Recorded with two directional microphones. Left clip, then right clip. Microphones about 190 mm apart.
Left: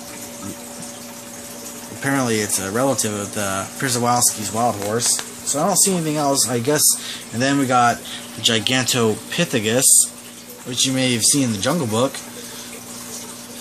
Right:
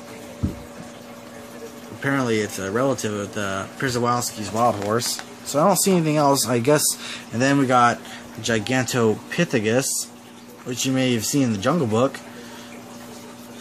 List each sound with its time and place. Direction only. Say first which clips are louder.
2.0 s speech: left 2 dB; centre (ahead or behind)
4.8 s speech: left 2 dB; 30° right (ahead or behind); by 12.1 s 10° right (ahead or behind)